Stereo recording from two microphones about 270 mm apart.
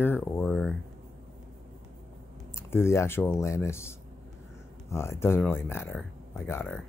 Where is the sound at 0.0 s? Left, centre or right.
Centre.